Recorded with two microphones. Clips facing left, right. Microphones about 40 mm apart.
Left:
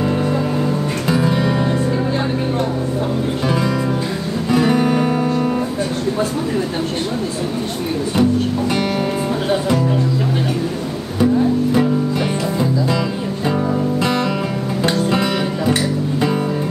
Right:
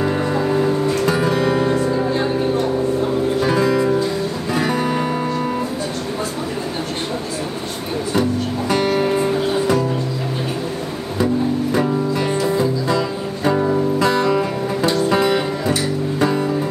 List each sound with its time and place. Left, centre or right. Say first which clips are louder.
0.0 s music: left 1 dB; centre
8.2 s music: left 5 dB; left
13.5 s music: right 2 dB; centre
14.0 s music: right 3 dB; left